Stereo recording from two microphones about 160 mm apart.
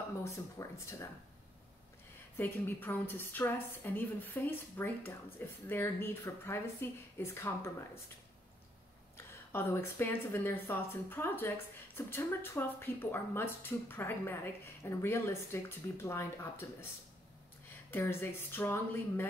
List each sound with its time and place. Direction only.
0.2 s speech: 20° left (ahead or behind)
2.3 s speech: 10° left (ahead or behind)
9.1 s speech: 15° left (ahead or behind)
17.9 s speech: 15° left (ahead or behind)